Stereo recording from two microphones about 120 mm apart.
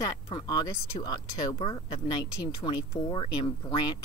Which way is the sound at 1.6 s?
50° left (ahead or behind).